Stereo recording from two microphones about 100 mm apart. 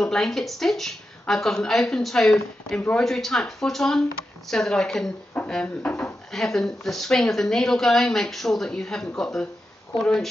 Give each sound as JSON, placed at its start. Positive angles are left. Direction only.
{"t": 0.0, "sound": "speech", "side_deg": 5}
{"t": 6.3, "sound": "speech", "side_deg": 5}